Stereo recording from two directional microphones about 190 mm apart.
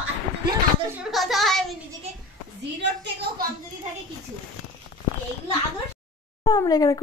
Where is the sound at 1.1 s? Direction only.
Centre (ahead or behind).